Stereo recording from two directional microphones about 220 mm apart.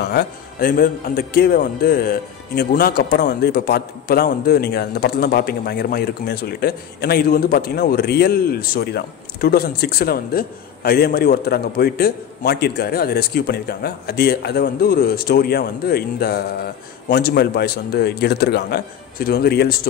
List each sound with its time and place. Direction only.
0.0 s a man's voice: 45° left (ahead or behind)